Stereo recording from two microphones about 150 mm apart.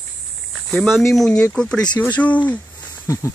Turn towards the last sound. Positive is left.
turn(degrees=20)  # may be behind; listen again after turning